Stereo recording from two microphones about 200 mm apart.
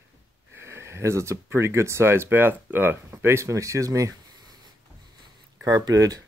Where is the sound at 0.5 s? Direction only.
15° right (ahead or behind).